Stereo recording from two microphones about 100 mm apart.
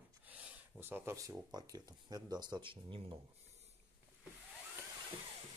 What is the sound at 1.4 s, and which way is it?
Speech, 40° right (ahead or behind).